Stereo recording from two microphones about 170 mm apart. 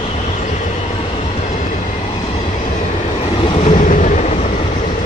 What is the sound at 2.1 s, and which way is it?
Train, 30° left (ahead or behind).